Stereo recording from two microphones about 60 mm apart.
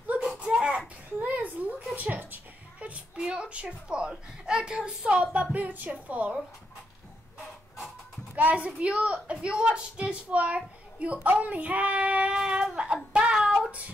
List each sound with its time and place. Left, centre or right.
0.6 s a sound: centre
3.2 s a woman's voice: centre
8.4 s a woman's voice: right